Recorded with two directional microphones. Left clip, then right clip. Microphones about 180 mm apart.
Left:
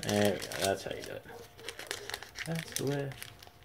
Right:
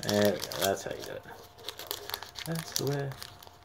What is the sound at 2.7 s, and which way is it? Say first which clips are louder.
Speech: right 3 dB; 10° right (ahead or behind).